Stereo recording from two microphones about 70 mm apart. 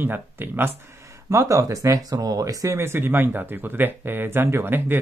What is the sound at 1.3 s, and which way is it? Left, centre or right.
Speech, right.